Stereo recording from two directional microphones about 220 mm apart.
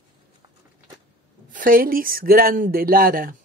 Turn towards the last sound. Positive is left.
turn(degrees=-40)  # may be behind; listen again after turning